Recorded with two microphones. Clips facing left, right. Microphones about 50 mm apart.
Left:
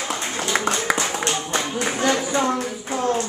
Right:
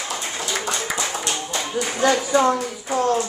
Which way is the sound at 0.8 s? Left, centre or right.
Left.